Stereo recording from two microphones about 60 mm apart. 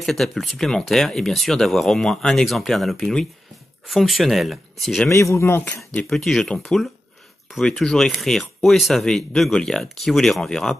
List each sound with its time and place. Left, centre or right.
0.0 s speech: centre
5.1 s speech: left
6.0 s speech: centre